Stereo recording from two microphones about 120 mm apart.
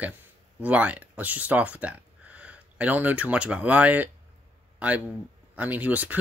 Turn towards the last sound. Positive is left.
turn(degrees=-15)  # may be behind; listen again after turning